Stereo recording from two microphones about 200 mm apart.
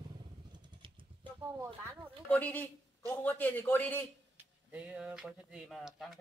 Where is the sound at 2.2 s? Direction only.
5° left (ahead or behind).